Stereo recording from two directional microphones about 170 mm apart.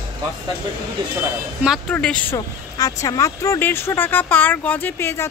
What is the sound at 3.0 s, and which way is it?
Speech, 20° left (ahead or behind).